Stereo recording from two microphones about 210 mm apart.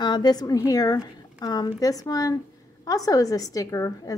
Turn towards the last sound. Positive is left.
turn(degrees=15)  # may be behind; listen again after turning